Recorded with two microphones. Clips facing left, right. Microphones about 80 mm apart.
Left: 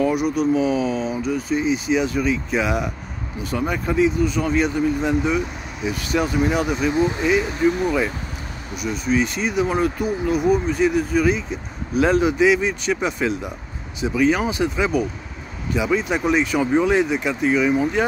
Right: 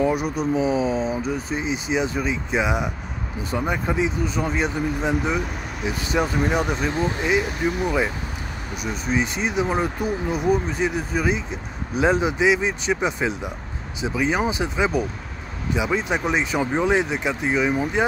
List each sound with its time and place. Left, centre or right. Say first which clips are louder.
0.0 s speech: left 2 dB; right
6.9 s speech: left 4 dB; centre
7.2 s speech: left 2 dB; right
8.8 s speech: left 3 dB; right